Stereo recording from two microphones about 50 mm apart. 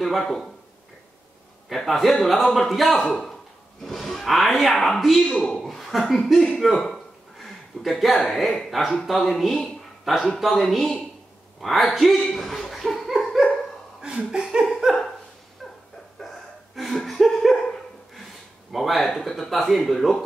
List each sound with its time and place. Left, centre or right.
0.0 s speech: centre
1.7 s speech: centre
3.0 s speech: centre
3.8 s speech: centre
6.6 s a sound: centre
8.3 s speech: centre
9.5 s a sound: centre
10.4 s speech: centre
12.2 s dog: centre
14.0 s laughter: centre
14.7 s a sound: centre
16.2 s a sound: centre
18.7 s speech: centre